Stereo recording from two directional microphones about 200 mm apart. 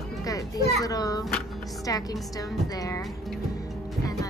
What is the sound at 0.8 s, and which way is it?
Speech, 20° left (ahead or behind).